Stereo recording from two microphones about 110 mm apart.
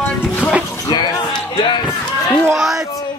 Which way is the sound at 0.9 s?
40° left (ahead or behind).